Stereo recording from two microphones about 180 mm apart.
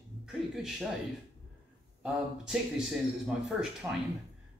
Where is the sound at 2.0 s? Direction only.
5° right (ahead or behind).